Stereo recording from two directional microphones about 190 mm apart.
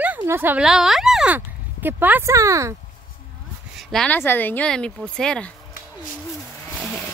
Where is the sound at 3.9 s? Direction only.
5° left (ahead or behind).